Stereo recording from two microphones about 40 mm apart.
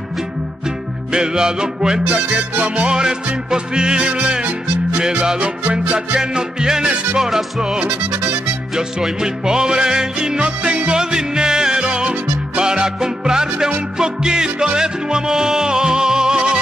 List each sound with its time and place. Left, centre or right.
1.1 s music: centre
2.0 s music: right
2.9 s music: centre
5.4 s music: right
7.2 s music: centre
8.7 s music: centre